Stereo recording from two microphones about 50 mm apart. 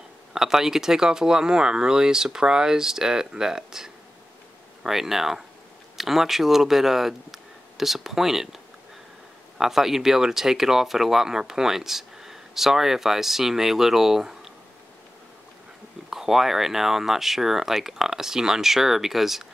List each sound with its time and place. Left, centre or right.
0.3 s speech: centre
9.6 s speech: centre
16.1 s speech: centre